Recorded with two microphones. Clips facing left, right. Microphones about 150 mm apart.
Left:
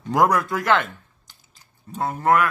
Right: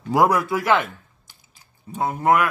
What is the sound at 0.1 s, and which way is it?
Speech, 5° right (ahead or behind).